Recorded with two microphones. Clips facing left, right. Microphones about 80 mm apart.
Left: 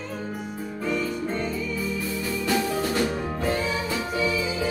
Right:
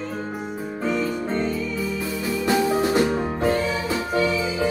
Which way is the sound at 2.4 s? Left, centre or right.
Right.